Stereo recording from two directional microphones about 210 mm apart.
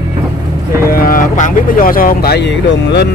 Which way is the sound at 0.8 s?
40° left (ahead or behind).